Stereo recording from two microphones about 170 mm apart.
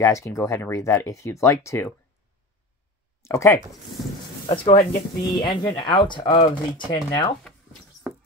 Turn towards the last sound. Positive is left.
turn(degrees=25)  # may be behind; listen again after turning